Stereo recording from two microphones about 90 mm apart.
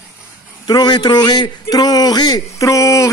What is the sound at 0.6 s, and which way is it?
A man's voice, 50° left (ahead or behind).